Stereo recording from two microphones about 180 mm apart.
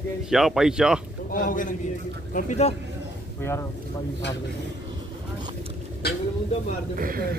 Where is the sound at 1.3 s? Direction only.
45° left (ahead or behind).